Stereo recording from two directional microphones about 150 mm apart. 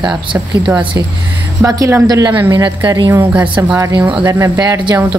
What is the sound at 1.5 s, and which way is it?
Speech, 20° right (ahead or behind).